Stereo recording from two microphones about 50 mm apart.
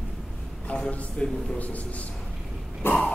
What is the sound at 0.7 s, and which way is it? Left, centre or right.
A man's voice, left.